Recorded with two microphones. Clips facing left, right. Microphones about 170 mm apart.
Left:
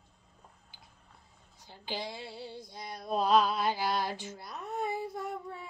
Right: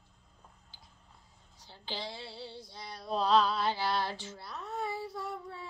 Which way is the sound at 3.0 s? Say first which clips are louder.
Left 1 dB; 15° left (ahead or behind).